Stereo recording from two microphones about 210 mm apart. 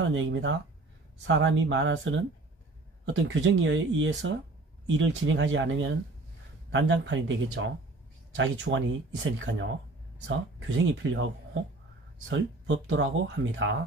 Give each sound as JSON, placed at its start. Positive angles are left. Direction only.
{"t": 0.0, "sound": "speech", "side_deg": -65}
{"t": 10.9, "sound": "speech", "side_deg": -65}
{"t": 12.3, "sound": "speech", "side_deg": -65}